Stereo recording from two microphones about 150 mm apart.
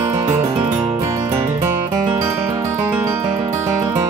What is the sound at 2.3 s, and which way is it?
Music, 20° right (ahead or behind).